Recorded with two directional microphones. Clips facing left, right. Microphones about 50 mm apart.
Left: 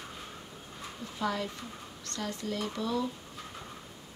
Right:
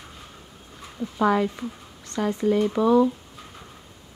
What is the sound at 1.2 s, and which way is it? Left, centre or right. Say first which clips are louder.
Speech: right 12 dB; right.